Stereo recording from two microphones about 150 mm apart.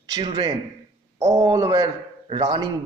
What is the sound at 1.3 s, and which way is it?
A man's voice, 20° right (ahead or behind).